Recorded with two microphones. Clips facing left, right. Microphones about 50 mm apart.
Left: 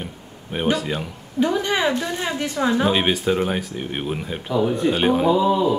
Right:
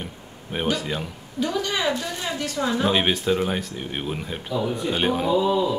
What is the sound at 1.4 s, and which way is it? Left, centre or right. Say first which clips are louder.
A woman's voice: left 4 dB; left.